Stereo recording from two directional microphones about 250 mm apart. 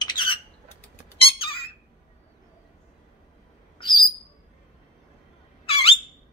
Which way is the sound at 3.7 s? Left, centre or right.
Centre.